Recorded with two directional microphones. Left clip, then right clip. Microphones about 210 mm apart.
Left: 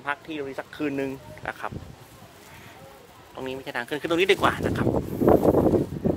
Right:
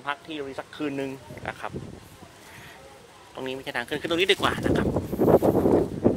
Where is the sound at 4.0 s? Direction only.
15° left (ahead or behind).